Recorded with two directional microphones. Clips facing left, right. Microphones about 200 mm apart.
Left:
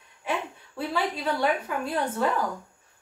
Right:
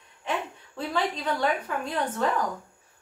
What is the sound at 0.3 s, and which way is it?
A woman's voice, 10° left (ahead or behind).